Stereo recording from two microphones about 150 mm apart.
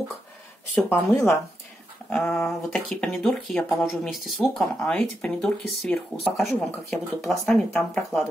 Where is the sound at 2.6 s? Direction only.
5° left (ahead or behind).